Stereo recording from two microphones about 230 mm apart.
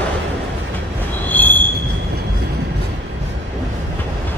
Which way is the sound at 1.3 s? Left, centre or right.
Centre.